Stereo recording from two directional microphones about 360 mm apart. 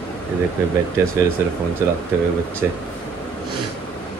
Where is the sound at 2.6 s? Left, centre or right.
Centre.